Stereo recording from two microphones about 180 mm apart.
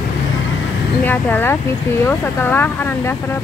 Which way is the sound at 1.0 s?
10° left (ahead or behind).